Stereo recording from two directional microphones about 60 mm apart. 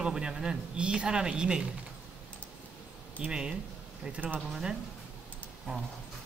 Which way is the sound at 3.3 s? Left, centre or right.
Centre.